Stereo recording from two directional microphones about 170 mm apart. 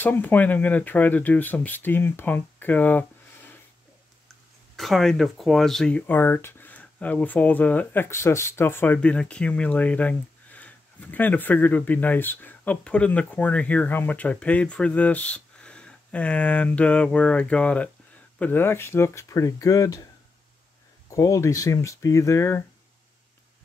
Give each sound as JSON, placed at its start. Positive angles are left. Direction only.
{"t": 0.0, "sound": "speech", "side_deg": 10}
{"t": 4.7, "sound": "speech", "side_deg": 0}
{"t": 21.1, "sound": "speech", "side_deg": 20}